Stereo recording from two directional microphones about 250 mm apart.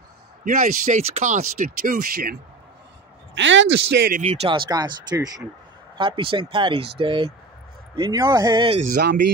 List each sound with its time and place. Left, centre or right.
0.5 s speech: right
3.3 s speech: right
4.0 s speech: right